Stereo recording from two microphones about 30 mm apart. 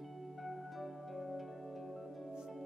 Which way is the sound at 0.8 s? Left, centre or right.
Centre.